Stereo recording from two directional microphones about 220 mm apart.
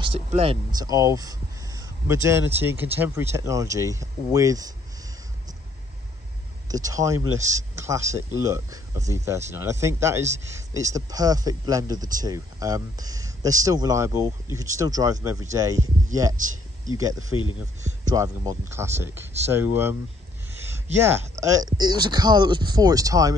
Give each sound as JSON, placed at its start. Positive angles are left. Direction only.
{"t": 0.0, "sound": "speech", "side_deg": -25}
{"t": 6.7, "sound": "speech", "side_deg": -15}
{"t": 16.9, "sound": "speech", "side_deg": -15}